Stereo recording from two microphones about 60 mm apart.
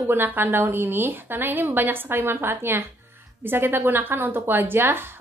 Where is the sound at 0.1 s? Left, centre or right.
Right.